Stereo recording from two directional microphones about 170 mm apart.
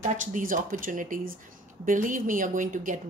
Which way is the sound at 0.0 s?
50° right (ahead or behind).